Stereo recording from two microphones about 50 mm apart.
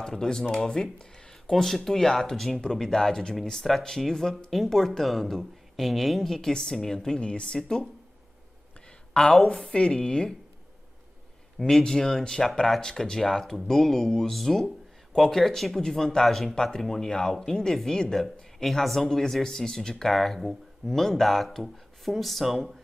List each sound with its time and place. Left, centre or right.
0.0 s speech: centre
9.1 s speech: centre
9.5 s speech: centre
11.6 s speech: centre